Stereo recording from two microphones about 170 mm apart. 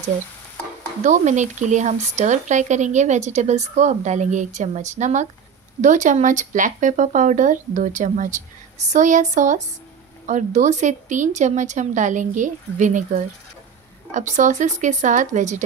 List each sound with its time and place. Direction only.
1.0 s speech: 45° right (ahead or behind)